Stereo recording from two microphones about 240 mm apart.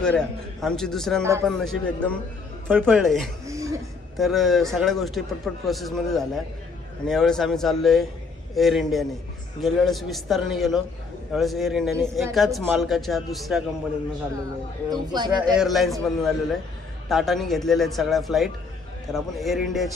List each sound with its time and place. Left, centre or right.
0.0 s speech: centre
3.4 s speech: centre
4.2 s speech: centre
14.9 s speech: centre
15.5 s speech: centre